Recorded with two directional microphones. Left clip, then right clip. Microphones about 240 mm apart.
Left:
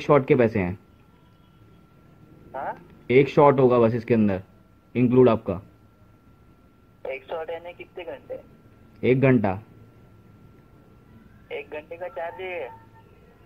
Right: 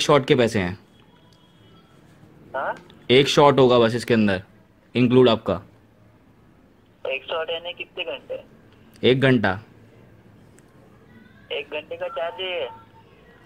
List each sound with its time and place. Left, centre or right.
0.0 s speech: right
2.5 s speech: centre
3.1 s speech: right
7.0 s speech: centre
9.0 s speech: right
11.4 s speech: centre